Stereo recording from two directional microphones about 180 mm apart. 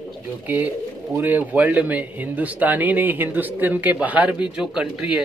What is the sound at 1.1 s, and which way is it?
Speech, 10° right (ahead or behind).